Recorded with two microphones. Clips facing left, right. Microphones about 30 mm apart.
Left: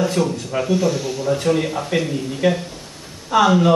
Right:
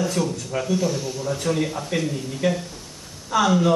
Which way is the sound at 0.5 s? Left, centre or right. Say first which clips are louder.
Left 4 dB; left.